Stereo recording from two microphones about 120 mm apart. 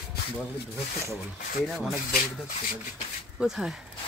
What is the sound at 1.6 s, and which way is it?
Speech, centre (ahead or behind).